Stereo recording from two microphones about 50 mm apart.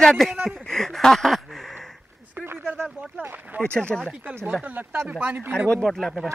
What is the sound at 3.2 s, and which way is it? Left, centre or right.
Speech, right.